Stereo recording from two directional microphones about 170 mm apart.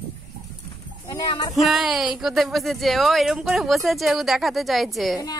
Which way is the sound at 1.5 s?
Centre (ahead or behind).